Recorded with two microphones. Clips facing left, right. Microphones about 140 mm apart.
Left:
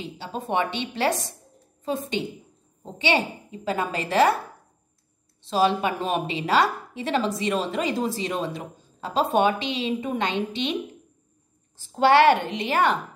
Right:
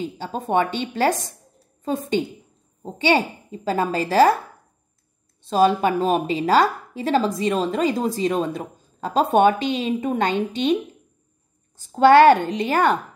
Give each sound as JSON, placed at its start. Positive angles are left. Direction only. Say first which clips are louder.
{"t": 0.0, "sound": "a woman's voice", "louder": "right 5 dB", "side_deg": -45}
{"t": 5.5, "sound": "a woman's voice", "louder": "right 4 dB", "side_deg": -45}
{"t": 11.9, "sound": "a woman's voice", "louder": "right 5 dB", "side_deg": -45}